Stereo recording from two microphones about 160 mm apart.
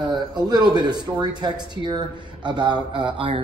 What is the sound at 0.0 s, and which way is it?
A man's voice, 25° right (ahead or behind).